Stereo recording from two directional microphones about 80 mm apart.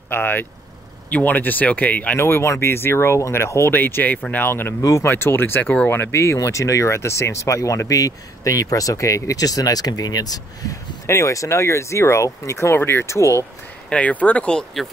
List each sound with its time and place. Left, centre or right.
0.1 s speech: left
2.1 s speech: left
11.1 s speech: left
13.8 s speech: centre